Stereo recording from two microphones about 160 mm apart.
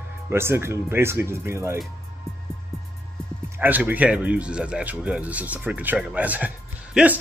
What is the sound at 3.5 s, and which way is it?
Speech, 10° right (ahead or behind).